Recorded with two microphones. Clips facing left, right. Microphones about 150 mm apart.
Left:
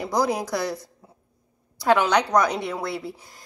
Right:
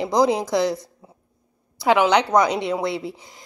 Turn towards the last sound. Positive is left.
turn(degrees=-20)  # may be behind; listen again after turning